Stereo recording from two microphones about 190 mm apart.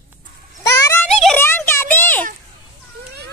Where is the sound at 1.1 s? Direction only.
5° left (ahead or behind).